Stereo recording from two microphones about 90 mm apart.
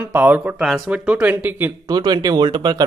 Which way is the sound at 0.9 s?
15° right (ahead or behind).